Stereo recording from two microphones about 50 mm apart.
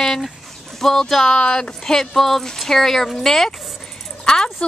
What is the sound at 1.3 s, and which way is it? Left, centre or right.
A woman's voice, centre.